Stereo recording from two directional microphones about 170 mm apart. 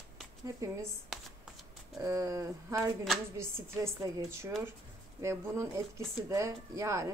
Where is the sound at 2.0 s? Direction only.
20° right (ahead or behind).